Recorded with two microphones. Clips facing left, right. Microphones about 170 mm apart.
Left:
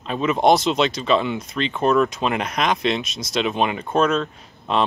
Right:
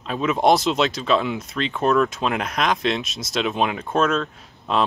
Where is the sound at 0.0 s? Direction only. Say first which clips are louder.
Left 1 dB; centre (ahead or behind).